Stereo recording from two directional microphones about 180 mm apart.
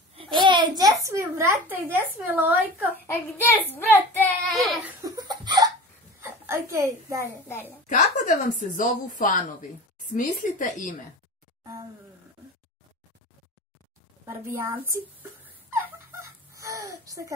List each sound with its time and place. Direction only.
0.1 s a sound: 30° right (ahead or behind)
1.0 s a woman's voice: 15° right (ahead or behind)
3.1 s a child's voice: 10° left (ahead or behind)
5.0 s laughter: 20° right (ahead or behind)
6.2 s a child's voice: 15° right (ahead or behind)
7.4 s a child's voice: 10° left (ahead or behind)
7.8 s speech: 40° left (ahead or behind)
14.2 s whimper: 10° right (ahead or behind)